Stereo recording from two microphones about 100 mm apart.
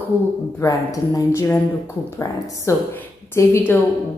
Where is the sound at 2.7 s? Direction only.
30° left (ahead or behind).